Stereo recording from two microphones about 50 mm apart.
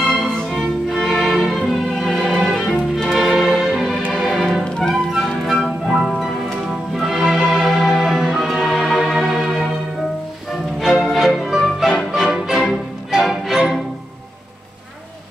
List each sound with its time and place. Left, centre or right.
0.0 s music: centre
4.6 s music: centre
4.9 s music: centre
10.8 s music: centre